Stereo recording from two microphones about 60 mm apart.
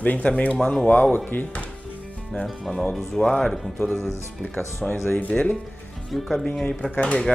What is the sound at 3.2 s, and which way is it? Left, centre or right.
Speech, centre.